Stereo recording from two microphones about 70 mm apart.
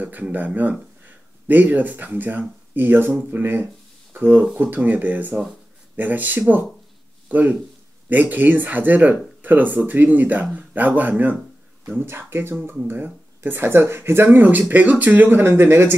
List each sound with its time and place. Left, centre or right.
0.0 s speech: right